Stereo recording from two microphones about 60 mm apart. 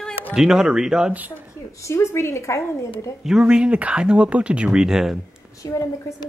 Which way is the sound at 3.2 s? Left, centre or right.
Centre.